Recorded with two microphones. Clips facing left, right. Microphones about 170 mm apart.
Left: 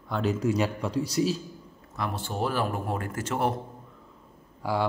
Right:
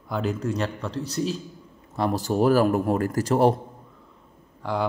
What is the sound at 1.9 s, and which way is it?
Speech, 35° right (ahead or behind).